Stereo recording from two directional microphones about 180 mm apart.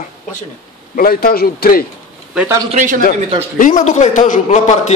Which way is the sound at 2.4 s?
15° right (ahead or behind).